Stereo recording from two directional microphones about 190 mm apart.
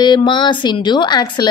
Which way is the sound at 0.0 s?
25° left (ahead or behind).